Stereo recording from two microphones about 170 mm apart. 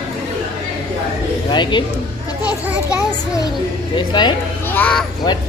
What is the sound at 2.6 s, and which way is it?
Children playing, 10° right (ahead or behind).